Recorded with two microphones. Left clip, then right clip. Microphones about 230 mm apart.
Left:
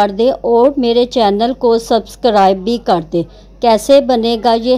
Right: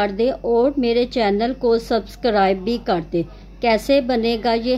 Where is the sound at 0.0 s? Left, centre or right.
Left.